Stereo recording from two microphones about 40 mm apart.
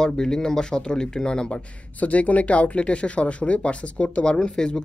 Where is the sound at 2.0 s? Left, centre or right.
Left.